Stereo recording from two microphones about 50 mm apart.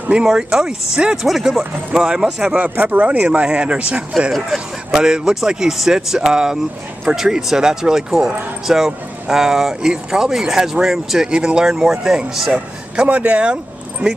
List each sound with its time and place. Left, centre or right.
0.1 s speech: centre
1.2 s speech: centre
2.0 s speech: centre
2.7 s speech: right; by 12.5 s centre
12.5 s speech: right